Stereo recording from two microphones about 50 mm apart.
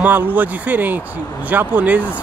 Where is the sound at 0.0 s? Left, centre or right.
Right.